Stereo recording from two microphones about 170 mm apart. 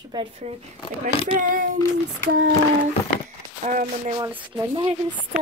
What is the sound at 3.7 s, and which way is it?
Speech, 50° right (ahead or behind).